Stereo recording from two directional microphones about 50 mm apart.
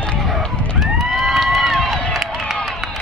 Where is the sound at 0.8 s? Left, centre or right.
Centre.